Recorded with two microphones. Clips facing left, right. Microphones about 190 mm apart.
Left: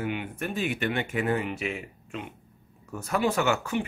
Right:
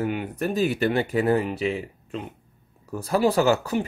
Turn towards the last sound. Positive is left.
turn(degrees=-35)  # may be behind; listen again after turning